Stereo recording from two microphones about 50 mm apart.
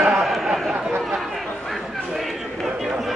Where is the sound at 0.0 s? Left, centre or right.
Centre.